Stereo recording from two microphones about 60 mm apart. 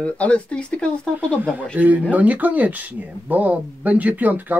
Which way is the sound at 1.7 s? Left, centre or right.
Right.